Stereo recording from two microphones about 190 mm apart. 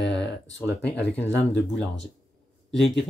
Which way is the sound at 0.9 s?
65° left (ahead or behind).